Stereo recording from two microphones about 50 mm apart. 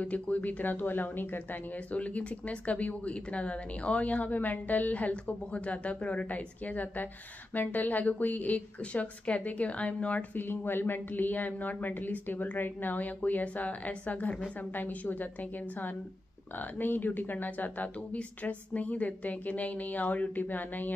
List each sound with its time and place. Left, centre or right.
0.0 s speech: left
1.9 s speech: left
10.3 s speech: left
16.5 s speech: left
18.1 s speech: left